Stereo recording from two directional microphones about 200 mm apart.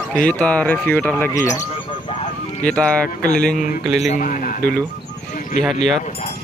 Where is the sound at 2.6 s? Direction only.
5° left (ahead or behind).